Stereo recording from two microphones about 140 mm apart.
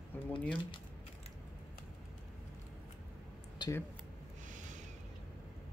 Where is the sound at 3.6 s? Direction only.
30° left (ahead or behind).